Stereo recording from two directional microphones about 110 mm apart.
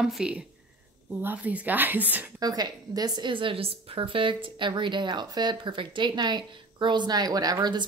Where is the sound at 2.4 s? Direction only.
35° right (ahead or behind).